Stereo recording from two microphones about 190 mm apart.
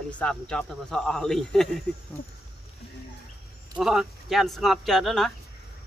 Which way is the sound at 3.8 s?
Centre (ahead or behind).